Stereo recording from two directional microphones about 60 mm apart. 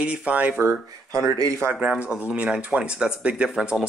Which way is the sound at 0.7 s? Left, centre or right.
Right.